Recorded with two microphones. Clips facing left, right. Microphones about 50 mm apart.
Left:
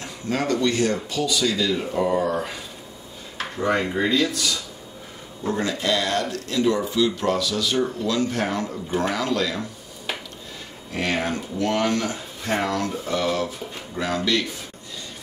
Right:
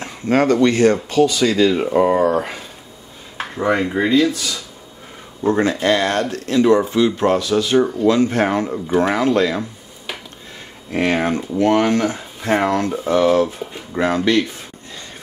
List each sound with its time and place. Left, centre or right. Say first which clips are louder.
0.0 s speech: right 9 dB; right
3.3 s dishes: right 4 dB; right
3.9 s speech: right 6 dB; centre
5.5 s speech: right 7 dB; right
10.9 s speech: right 7 dB; right